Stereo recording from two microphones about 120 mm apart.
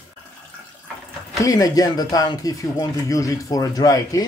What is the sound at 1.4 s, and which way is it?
Speech, 30° left (ahead or behind).